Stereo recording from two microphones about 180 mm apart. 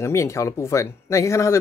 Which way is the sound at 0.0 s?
15° left (ahead or behind).